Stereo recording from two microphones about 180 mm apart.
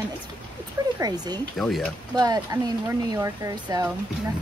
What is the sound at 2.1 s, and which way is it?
Speech, 20° right (ahead or behind).